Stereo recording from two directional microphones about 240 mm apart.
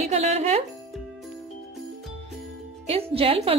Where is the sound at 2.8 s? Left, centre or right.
Right.